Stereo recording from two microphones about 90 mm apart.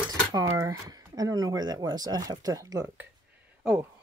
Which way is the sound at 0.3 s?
40° right (ahead or behind).